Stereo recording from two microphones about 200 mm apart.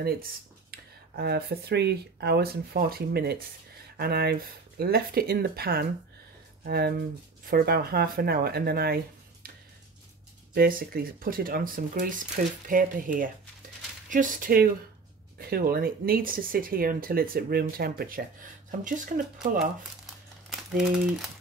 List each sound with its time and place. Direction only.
0.0 s speech: 50° right (ahead or behind)
10.5 s speech: 45° right (ahead or behind)
20.4 s speech: centre (ahead or behind)